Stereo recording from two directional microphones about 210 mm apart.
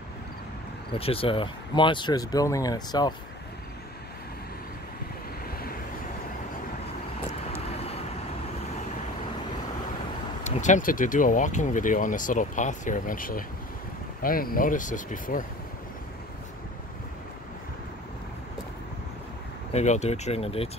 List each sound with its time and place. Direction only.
0.9 s speech: 25° left (ahead or behind)
5.5 s vehicle: 45° left (ahead or behind)
7.7 s vehicle: 30° left (ahead or behind)
10.4 s speech: 35° left (ahead or behind)
19.7 s speech: 35° left (ahead or behind)